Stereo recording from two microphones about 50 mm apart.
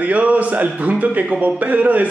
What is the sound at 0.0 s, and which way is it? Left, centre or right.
Speech, right.